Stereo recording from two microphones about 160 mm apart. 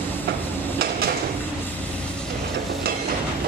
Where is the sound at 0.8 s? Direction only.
75° right (ahead or behind).